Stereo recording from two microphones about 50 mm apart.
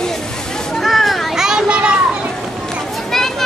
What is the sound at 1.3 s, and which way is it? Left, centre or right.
Children playing, centre.